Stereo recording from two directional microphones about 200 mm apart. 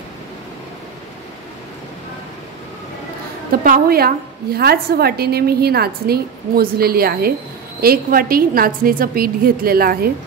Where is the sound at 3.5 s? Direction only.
45° right (ahead or behind).